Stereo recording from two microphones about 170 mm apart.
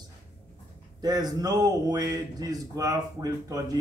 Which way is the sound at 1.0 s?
25° right (ahead or behind).